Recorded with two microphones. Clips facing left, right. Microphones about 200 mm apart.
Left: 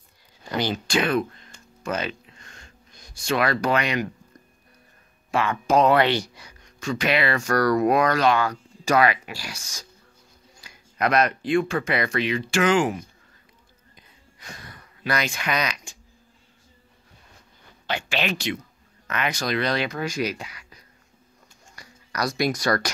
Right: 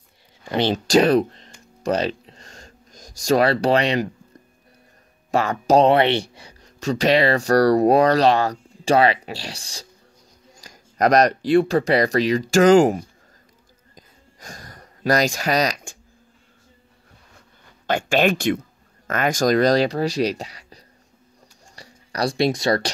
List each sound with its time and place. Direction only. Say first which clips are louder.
0.5 s speech: right 5 dB; 25° right (ahead or behind)
0.8 s speech: right 10 dB; 40° right (ahead or behind)
1.8 s a sound: right 7 dB; 35° right (ahead or behind)
5.3 s speech: right 4 dB; 40° right (ahead or behind)
13.9 s a sound: right 7 dB; 40° right (ahead or behind)
17.8 s speech: right 8 dB; 50° right (ahead or behind); by 22.8 s 25° right (ahead or behind)